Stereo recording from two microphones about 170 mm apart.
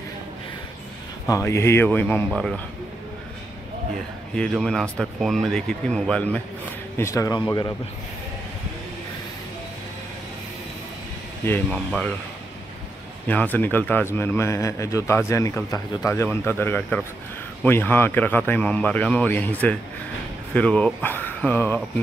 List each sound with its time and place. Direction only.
1.2 s a man's voice: 15° left (ahead or behind)
4.4 s speech: 5° left (ahead or behind)
7.0 s a man's voice: 20° left (ahead or behind)
11.4 s a man's voice: 10° left (ahead or behind)
13.3 s a man's voice: 10° left (ahead or behind)